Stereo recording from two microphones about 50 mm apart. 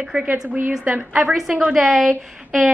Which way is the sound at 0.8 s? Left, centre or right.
Right.